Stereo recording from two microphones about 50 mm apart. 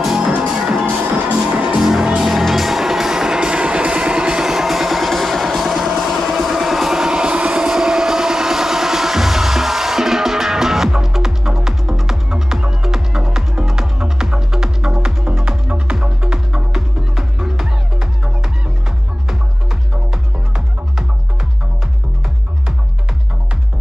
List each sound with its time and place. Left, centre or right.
0.0 s music: centre
15.4 s music: right
16.3 s music: centre
20.1 s music: centre